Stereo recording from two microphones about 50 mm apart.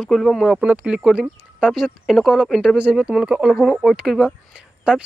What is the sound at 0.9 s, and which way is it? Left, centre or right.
Speech, right.